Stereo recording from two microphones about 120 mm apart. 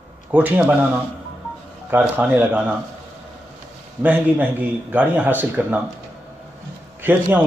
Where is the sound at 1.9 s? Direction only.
15° right (ahead or behind).